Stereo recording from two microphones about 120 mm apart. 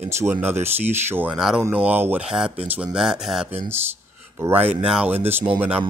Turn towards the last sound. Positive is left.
turn(degrees=-10)  # may be behind; listen again after turning